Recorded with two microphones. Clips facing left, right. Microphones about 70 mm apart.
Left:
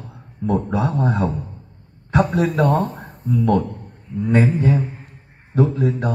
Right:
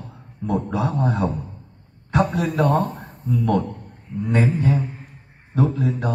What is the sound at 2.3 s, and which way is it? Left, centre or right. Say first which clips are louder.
Speech: left 4 dB; left.